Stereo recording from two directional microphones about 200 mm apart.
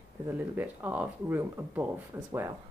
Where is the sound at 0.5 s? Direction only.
10° right (ahead or behind).